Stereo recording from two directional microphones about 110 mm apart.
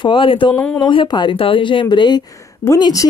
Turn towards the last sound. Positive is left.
turn(degrees=35)  # may be behind; listen again after turning